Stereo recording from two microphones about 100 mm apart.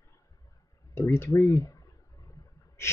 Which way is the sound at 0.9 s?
25° left (ahead or behind).